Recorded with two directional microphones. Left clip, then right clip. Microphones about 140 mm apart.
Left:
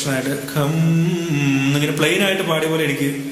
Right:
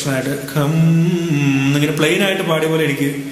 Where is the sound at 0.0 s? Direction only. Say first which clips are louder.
Right 2 dB; 15° right (ahead or behind).